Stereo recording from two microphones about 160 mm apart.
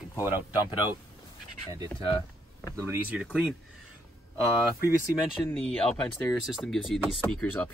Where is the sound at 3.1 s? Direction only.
5° right (ahead or behind).